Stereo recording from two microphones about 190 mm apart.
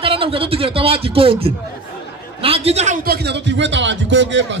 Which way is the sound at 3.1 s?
65° right (ahead or behind).